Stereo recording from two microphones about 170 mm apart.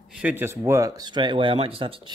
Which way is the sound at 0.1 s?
10° right (ahead or behind).